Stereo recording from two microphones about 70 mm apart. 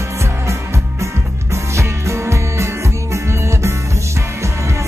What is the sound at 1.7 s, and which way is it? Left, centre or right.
Music, right.